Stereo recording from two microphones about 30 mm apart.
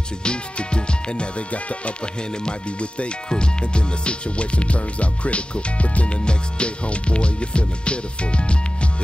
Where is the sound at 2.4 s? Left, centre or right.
Left.